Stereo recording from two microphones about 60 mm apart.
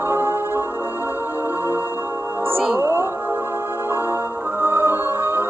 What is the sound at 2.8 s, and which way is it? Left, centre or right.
Music, right.